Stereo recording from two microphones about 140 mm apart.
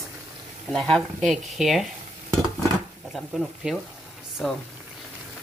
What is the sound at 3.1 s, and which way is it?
Speech, centre (ahead or behind).